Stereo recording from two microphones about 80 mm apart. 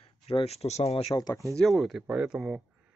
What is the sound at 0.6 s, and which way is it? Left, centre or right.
Speech, left.